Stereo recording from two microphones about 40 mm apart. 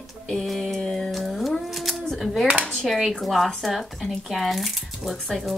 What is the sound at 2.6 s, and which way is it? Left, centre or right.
Speech, centre.